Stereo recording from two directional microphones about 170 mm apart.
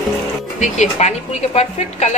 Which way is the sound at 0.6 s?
40° left (ahead or behind).